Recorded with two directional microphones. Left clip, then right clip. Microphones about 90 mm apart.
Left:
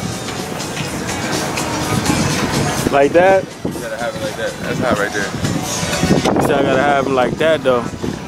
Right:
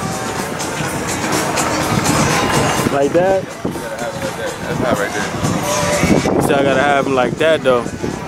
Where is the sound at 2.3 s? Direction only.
40° right (ahead or behind).